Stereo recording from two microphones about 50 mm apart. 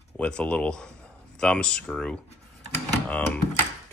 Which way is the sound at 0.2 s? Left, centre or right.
Centre.